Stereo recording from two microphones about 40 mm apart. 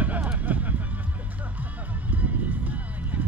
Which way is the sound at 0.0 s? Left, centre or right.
Right.